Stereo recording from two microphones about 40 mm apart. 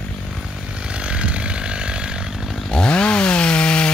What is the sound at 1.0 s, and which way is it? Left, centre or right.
Chainsaw, right.